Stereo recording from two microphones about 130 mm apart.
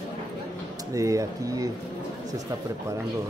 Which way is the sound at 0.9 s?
25° right (ahead or behind).